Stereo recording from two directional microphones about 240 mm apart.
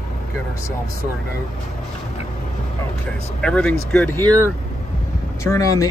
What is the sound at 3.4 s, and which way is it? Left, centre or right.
Speech, centre.